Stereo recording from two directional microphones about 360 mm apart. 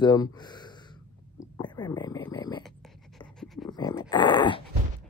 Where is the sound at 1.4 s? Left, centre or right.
Centre.